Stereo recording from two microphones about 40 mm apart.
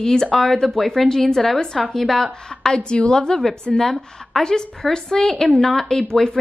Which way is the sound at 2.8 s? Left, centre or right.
Left.